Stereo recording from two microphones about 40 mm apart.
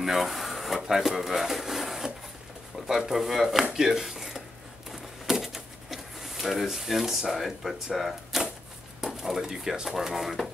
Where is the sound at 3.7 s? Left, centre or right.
Centre.